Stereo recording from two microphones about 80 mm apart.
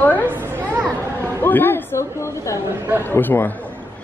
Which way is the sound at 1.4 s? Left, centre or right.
Left.